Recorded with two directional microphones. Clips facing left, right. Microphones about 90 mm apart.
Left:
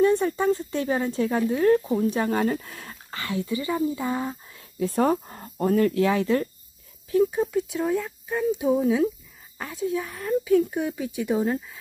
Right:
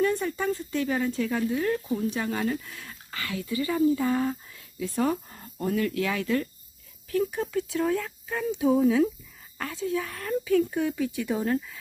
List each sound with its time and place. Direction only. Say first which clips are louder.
0.0 s speech: left 5 dB; 30° left (ahead or behind)
4.6 s speech: left 8 dB; 40° left (ahead or behind); by 7.3 s 20° left (ahead or behind)
7.7 s speech: left 1 dB; 10° left (ahead or behind)